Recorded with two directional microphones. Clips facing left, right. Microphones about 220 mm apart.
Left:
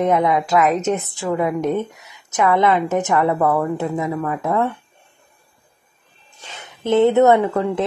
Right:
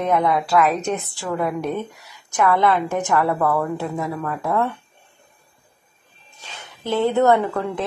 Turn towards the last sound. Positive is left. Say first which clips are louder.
# left 3 dB
turn(degrees=20)  # may be behind; listen again after turning